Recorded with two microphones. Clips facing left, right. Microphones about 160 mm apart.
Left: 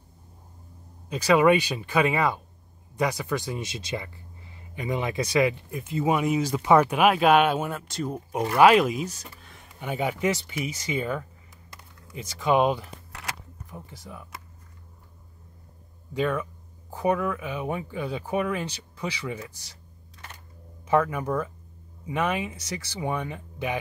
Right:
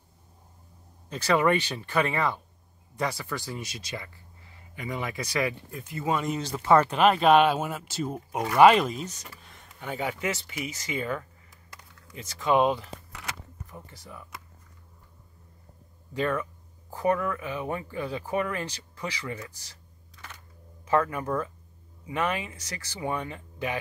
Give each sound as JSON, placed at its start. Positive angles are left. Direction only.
{"t": 1.0, "sound": "speech", "side_deg": 10}
{"t": 9.8, "sound": "speech", "side_deg": 15}
{"t": 16.2, "sound": "speech", "side_deg": 15}
{"t": 20.8, "sound": "speech", "side_deg": 20}